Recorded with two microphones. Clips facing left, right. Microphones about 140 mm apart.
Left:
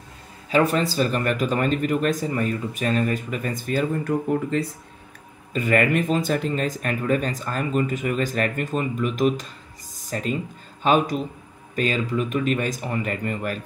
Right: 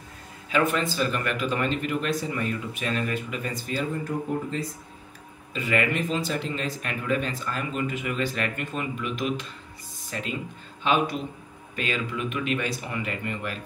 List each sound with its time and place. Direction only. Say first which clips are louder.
0.5 s speech: left 4 dB; 35° left (ahead or behind); by 4.7 s 65° left (ahead or behind)
5.5 s speech: left 5 dB; 50° left (ahead or behind)
9.9 s music: left 6 dB; 40° left (ahead or behind)
10.8 s a man's voice: left 4 dB; 40° left (ahead or behind)